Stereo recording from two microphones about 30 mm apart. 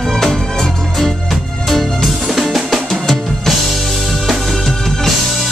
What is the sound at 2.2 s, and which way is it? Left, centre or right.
Music, centre.